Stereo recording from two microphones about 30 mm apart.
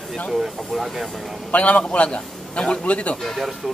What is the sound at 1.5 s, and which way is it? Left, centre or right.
Speech, left.